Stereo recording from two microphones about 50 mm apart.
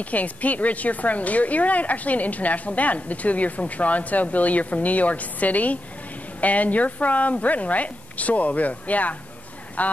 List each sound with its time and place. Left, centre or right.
0.0 s speech: left